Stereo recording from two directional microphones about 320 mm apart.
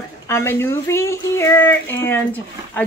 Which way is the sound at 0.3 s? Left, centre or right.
Centre.